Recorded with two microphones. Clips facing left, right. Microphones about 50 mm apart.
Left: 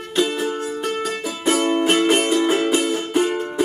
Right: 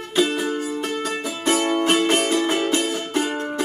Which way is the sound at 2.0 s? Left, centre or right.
Centre.